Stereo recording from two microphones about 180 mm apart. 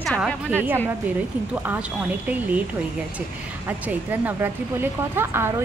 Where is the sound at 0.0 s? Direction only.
5° left (ahead or behind).